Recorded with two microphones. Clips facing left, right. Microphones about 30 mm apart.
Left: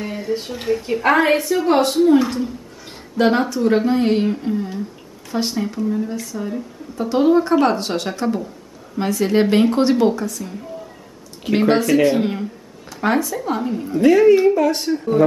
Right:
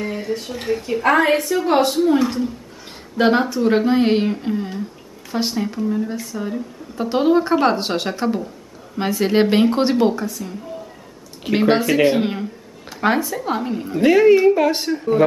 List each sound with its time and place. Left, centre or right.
0.5 s a woman's voice: centre
1.0 s a woman's voice: centre
11.4 s speech: centre; by 14.8 s right
14.8 s speech: centre